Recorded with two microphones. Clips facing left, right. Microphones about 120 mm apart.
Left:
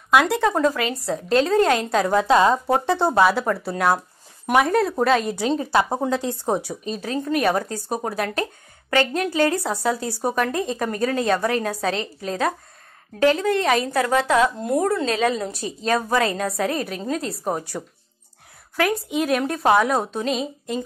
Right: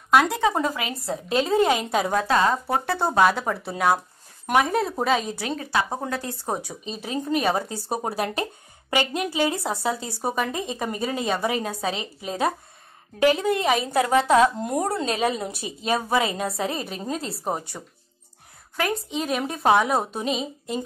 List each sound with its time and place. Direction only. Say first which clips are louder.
0.1 s speech: left 1 dB; centre (ahead or behind)
0.5 s a woman's voice: left 4 dB; 10° right (ahead or behind)
2.2 s speech: left 5 dB; 20° left (ahead or behind)
3.2 s speech: left 2 dB; centre (ahead or behind)
5.4 s speech: left 6 dB; 30° left (ahead or behind)
7.1 s a woman's voice: left 2 dB; 10° right (ahead or behind)
9.1 s a woman's voice: left 4 dB; 10° right (ahead or behind)
18.9 s speech: left 4 dB; 5° left (ahead or behind)